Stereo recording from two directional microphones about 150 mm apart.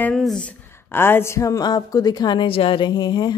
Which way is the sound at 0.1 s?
Centre (ahead or behind).